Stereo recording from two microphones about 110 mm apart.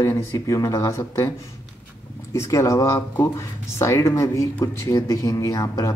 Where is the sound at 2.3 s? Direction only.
25° left (ahead or behind).